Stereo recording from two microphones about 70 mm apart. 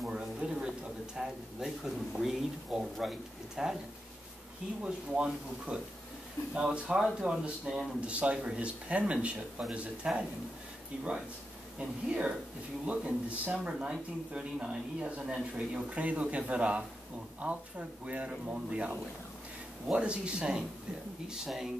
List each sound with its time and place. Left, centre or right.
0.0 s a sound: centre
1.1 s speech: centre
4.8 s speech: centre
12.1 s speech: centre